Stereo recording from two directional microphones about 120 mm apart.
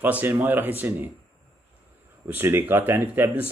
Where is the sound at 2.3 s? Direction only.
15° right (ahead or behind).